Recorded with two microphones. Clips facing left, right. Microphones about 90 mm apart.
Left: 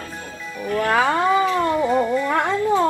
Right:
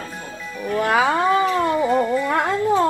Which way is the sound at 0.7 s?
20° right (ahead or behind).